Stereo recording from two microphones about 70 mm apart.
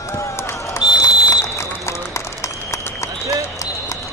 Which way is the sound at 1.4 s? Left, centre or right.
Left.